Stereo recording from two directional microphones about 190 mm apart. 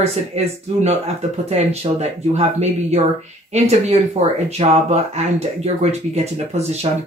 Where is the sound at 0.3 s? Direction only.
35° right (ahead or behind).